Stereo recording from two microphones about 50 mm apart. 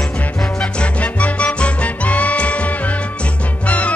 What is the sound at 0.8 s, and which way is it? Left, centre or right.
Music, left.